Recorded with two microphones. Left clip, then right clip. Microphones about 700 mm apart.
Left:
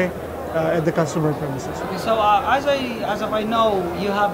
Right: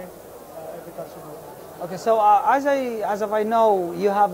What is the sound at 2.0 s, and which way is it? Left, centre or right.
A man's voice, right.